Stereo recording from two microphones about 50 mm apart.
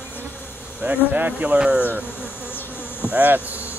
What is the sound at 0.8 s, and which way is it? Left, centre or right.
Speech, right.